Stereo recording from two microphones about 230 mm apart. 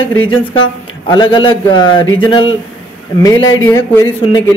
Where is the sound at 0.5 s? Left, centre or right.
Centre.